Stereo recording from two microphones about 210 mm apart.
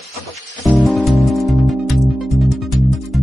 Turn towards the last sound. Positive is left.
turn(degrees=0)  # may be behind; listen again after turning